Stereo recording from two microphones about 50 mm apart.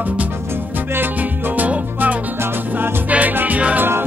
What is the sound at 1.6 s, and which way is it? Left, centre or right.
Music, right.